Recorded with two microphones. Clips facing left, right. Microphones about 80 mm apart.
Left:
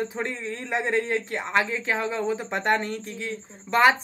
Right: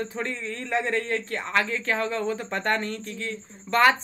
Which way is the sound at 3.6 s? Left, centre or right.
Centre.